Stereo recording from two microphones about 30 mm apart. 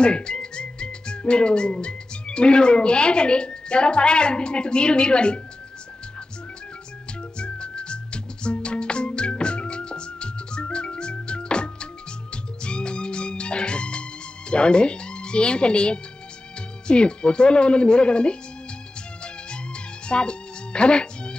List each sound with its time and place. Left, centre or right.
0.0 s speech: left
7.3 s music: left
14.5 s speech: left
20.1 s music: left